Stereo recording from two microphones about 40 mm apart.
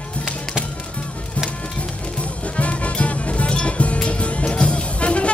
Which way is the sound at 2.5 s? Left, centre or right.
Left.